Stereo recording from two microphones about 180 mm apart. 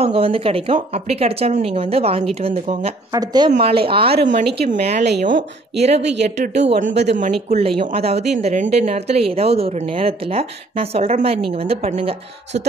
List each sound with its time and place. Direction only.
0.0 s speech: 30° right (ahead or behind)
3.1 s a woman's voice: 20° right (ahead or behind); by 6.9 s 40° right (ahead or behind)
6.9 s speech: 70° right (ahead or behind)
7.2 s speech: 40° right (ahead or behind)